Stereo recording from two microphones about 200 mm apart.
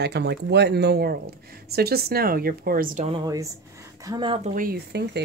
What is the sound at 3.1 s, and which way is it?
A woman's voice, 20° right (ahead or behind).